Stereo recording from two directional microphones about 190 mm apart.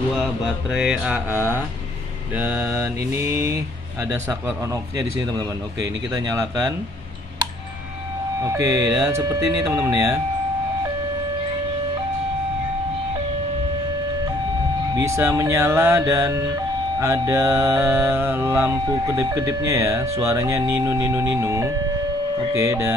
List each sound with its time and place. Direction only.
0.2 s mantra: 5° right (ahead or behind)
2.3 s speech: 10° right (ahead or behind)
8.4 s speech: 15° right (ahead or behind)
15.0 s speech: 15° right (ahead or behind)